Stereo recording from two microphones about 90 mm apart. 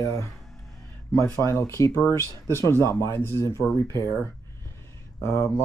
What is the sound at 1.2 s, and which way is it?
Speech, 40° right (ahead or behind).